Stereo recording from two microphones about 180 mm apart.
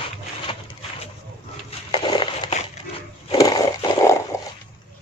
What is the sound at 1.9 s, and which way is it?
Crushing, 25° left (ahead or behind).